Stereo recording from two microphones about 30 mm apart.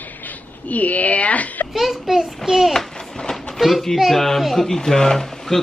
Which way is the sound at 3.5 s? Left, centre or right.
Centre.